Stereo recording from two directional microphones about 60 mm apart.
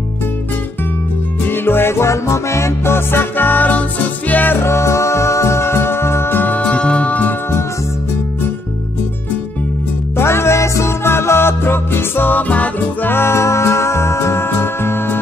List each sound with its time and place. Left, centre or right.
1.5 s music: left
4.6 s music: left
10.1 s music: left
13.1 s music: left